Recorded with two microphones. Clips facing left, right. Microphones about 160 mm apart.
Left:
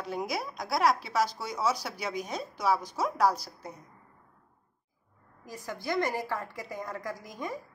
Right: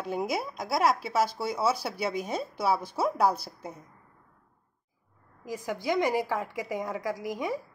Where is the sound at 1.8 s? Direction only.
55° right (ahead or behind).